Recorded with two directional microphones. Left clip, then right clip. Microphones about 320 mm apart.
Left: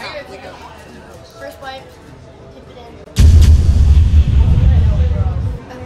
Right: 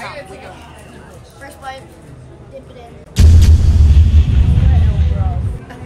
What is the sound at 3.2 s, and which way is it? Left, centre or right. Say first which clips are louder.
Music: even; centre.